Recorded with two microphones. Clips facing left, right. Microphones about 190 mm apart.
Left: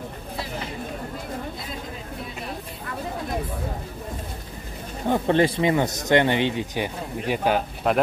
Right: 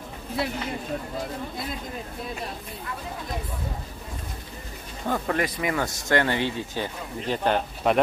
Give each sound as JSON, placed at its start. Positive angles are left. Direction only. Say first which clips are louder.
{"t": 5.0, "sound": "speech", "louder": "left 6 dB", "side_deg": 25}